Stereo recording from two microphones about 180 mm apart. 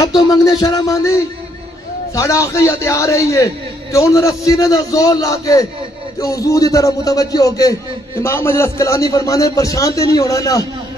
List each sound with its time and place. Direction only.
0.0 s a man's voice: 20° left (ahead or behind)